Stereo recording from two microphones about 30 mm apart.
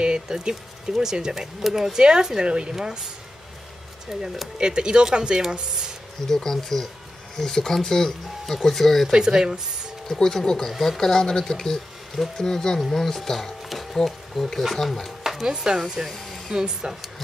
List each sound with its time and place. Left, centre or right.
0.3 s speech: centre
2.0 s speech: right
4.1 s speech: centre
4.6 s speech: right
6.2 s speech: centre
9.1 s speech: right
10.0 s speech: centre
10.7 s speech: centre
15.4 s speech: right
16.1 s vacuum cleaner: centre
16.5 s speech: right